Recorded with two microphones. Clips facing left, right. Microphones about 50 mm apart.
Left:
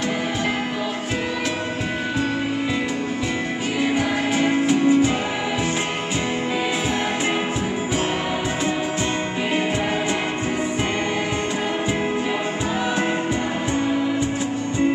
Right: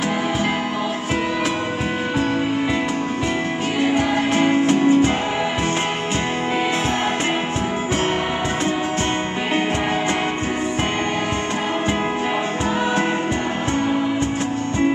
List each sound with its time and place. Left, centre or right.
4.0 s music: right